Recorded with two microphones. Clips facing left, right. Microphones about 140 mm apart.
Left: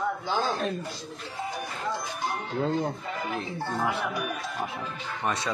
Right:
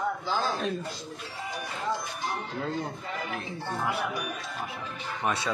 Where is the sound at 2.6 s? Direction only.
25° left (ahead or behind).